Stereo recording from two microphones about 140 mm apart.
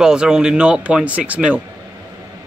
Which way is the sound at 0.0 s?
5° right (ahead or behind).